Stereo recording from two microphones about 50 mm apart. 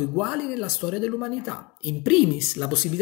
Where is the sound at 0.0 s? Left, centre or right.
Centre.